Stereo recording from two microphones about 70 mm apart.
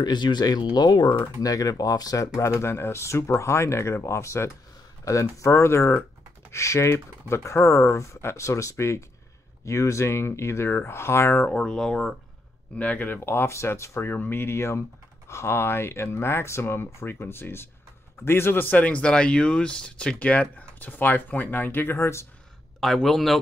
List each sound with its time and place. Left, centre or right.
0.0 s speech: left
11.5 s speech: centre
12.7 s speech: left
14.1 s speech: left
21.9 s speech: left
22.8 s a man's voice: centre